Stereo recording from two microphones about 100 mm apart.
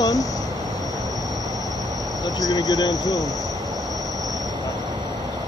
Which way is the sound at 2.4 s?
40° left (ahead or behind).